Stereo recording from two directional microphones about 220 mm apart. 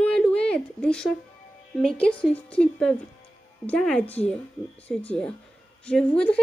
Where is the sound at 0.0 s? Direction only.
5° left (ahead or behind).